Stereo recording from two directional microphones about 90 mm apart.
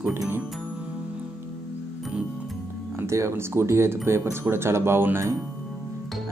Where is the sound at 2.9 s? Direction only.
35° right (ahead or behind).